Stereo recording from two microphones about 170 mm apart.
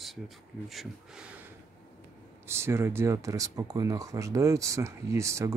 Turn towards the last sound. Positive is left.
turn(degrees=-15)  # may be behind; listen again after turning